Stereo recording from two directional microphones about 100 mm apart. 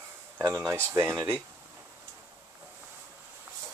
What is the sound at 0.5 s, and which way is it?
Speech, 25° right (ahead or behind).